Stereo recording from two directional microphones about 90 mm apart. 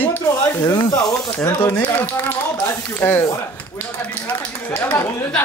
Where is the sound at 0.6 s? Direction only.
40° left (ahead or behind).